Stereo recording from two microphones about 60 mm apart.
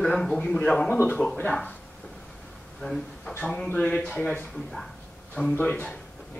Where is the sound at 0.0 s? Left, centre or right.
Centre.